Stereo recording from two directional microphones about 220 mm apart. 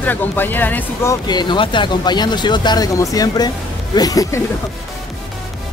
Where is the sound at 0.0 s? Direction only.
10° left (ahead or behind).